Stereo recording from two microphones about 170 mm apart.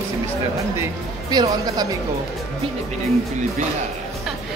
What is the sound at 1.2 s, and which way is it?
Speech, 25° right (ahead or behind).